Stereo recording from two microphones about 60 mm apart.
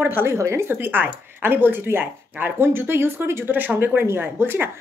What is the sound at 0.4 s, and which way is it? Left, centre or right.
Speech, right.